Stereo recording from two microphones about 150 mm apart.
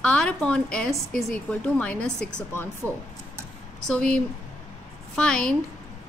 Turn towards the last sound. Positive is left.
turn(degrees=5)  # may be behind; listen again after turning